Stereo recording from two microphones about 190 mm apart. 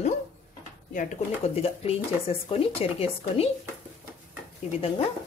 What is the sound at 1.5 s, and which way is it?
Speech, 30° left (ahead or behind).